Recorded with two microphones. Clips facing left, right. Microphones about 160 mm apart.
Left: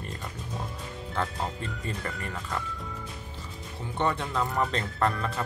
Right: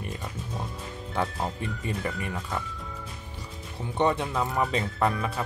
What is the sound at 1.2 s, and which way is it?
Speech, 15° right (ahead or behind).